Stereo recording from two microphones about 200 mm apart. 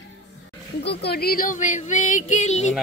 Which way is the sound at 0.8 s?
55° left (ahead or behind).